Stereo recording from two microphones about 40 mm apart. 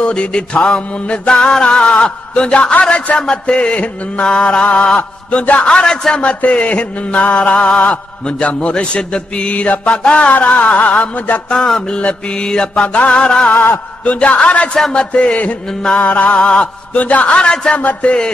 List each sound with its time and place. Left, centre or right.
0.0 s mantra: left
3.2 s a man's voice: centre
3.5 s mantra: left
5.9 s a man's voice: centre
6.2 s mantra: left
10.3 s mantra: left
11.5 s mantra: centre
12.8 s mantra: left
13.1 s mantra: left
16.0 s mantra: left
16.3 s mantra: left
16.9 s mantra: left
17.4 s a man's voice: centre
17.7 s mantra: left